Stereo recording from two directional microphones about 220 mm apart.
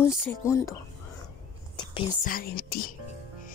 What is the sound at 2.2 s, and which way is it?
Speech, 40° left (ahead or behind).